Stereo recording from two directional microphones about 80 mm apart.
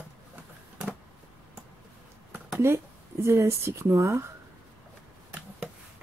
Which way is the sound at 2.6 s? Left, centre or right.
Right.